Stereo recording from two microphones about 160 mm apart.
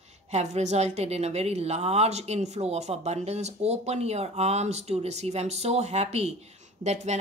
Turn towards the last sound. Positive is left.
turn(degrees=-45)  # may be behind; listen again after turning